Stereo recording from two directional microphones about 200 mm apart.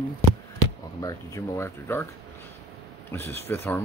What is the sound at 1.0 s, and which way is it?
Speech, 15° left (ahead or behind).